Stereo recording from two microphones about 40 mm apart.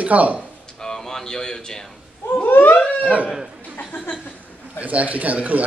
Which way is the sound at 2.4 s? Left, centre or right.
Left.